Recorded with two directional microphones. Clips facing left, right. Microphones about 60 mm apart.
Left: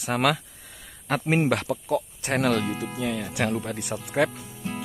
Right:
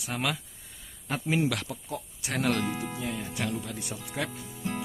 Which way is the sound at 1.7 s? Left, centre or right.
Left.